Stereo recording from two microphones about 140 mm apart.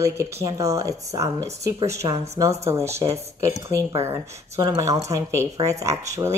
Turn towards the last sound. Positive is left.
turn(degrees=-20)  # may be behind; listen again after turning